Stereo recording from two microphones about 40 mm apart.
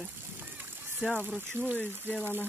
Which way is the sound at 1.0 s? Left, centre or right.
Right.